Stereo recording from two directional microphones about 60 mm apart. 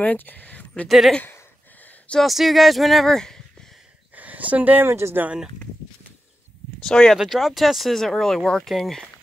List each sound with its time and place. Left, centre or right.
0.0 s speech: left
0.8 s speech: centre
2.2 s speech: centre
4.1 s a sound: right
4.8 s speech: right
6.8 s speech: centre
7.2 s speech: centre